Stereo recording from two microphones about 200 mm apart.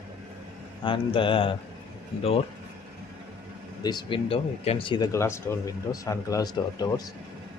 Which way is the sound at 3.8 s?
25° left (ahead or behind).